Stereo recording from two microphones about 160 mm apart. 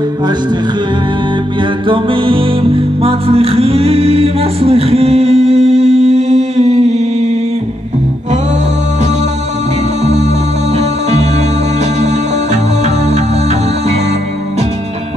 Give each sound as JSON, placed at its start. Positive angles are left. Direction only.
{"t": 1.9, "sound": "music", "side_deg": -35}
{"t": 10.8, "sound": "music", "side_deg": -45}